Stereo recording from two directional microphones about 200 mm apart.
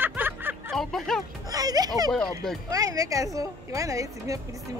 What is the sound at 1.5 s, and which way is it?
A child's voice, 20° right (ahead or behind).